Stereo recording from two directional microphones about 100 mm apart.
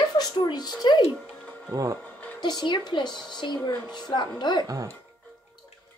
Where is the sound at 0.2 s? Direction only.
45° left (ahead or behind).